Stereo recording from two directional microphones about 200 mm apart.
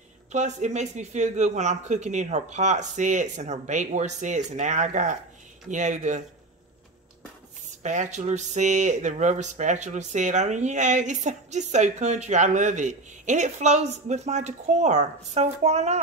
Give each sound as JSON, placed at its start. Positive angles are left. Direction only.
{"t": 0.3, "sound": "speech", "side_deg": -35}
{"t": 7.8, "sound": "speech", "side_deg": -35}